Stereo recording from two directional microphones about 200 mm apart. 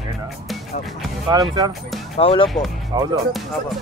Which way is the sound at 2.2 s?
30° left (ahead or behind).